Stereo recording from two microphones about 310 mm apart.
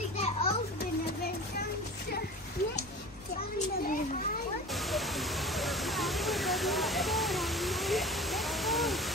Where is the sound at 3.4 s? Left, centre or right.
Left.